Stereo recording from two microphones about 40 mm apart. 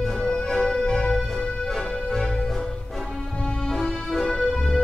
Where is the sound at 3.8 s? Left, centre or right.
Centre.